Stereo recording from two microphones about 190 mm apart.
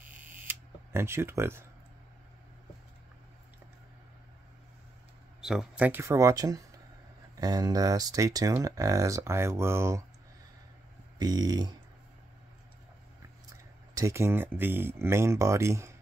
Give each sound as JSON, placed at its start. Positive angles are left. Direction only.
{"t": 0.3, "sound": "camera", "side_deg": -10}
{"t": 5.4, "sound": "speech", "side_deg": -5}
{"t": 11.1, "sound": "a sound", "side_deg": -20}
{"t": 13.9, "sound": "speech", "side_deg": -15}